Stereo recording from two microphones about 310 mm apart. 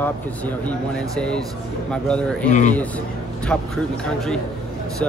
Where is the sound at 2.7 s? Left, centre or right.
Centre.